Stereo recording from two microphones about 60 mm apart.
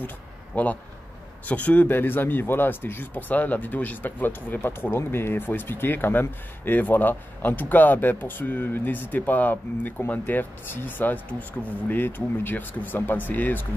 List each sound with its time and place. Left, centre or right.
0.5 s speech: left